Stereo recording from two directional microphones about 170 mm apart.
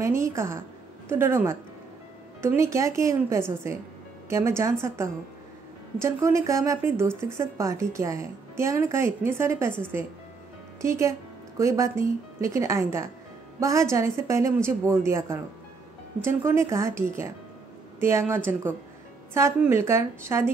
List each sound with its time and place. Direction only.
0.0 s speech: 15° right (ahead or behind)
18.3 s speech: 15° right (ahead or behind)